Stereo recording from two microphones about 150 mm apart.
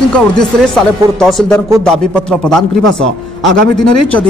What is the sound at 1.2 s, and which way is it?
A man's voice, 5° left (ahead or behind).